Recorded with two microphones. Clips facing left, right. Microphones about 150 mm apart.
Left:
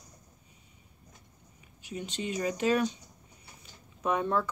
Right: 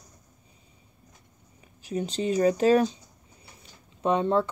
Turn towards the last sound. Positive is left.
turn(degrees=-25)  # may be behind; listen again after turning